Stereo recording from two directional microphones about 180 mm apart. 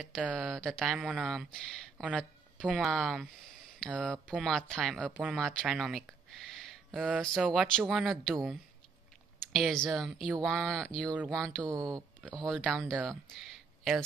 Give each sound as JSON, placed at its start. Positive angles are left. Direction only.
{"t": 0.0, "sound": "speech", "side_deg": 5}
{"t": 9.5, "sound": "speech", "side_deg": 0}
{"t": 11.7, "sound": "speech", "side_deg": -20}
{"t": 12.4, "sound": "speech", "side_deg": 5}